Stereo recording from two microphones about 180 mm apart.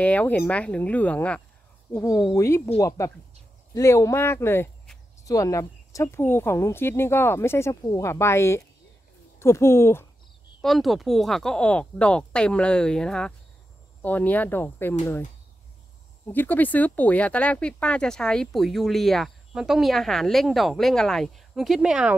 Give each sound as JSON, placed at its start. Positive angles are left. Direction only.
{"t": 0.0, "sound": "speech", "side_deg": 10}
{"t": 10.6, "sound": "speech", "side_deg": 0}
{"t": 16.3, "sound": "speech", "side_deg": 10}